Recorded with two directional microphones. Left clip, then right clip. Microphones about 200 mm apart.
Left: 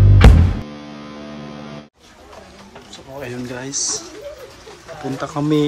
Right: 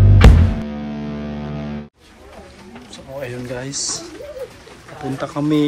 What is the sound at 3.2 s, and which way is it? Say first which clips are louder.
Speech: right 1 dB; 10° left (ahead or behind).